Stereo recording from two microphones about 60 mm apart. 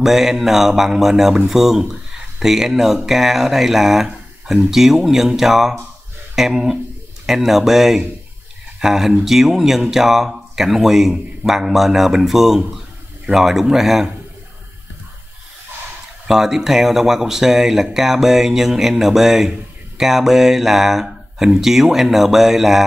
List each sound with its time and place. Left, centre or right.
0.0 s speech: centre
16.3 s speech: centre